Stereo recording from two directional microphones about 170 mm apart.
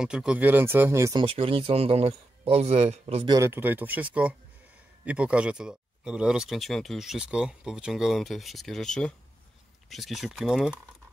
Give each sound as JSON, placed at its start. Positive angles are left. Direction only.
{"t": 0.0, "sound": "speech", "side_deg": -5}
{"t": 1.2, "sound": "a man's voice", "side_deg": -30}
{"t": 3.3, "sound": "speech", "side_deg": -15}